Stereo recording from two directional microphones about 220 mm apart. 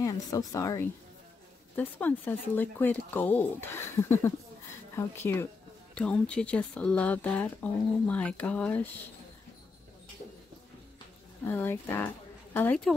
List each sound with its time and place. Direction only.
0.0 s speech: 15° left (ahead or behind)
11.4 s speech: 10° left (ahead or behind)